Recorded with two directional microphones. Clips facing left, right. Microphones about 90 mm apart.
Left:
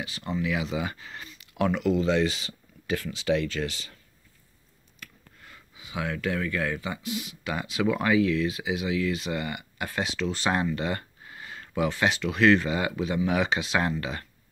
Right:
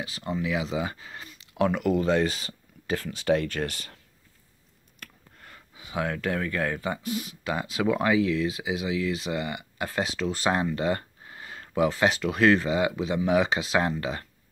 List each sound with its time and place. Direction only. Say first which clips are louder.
0.0 s speech: even; 30° right (ahead or behind)
1.4 s a sound: right 1 dB; 30° right (ahead or behind)
1.8 s speech: left 1 dB; 45° right (ahead or behind)
5.0 s speech: right 1 dB; 40° right (ahead or behind)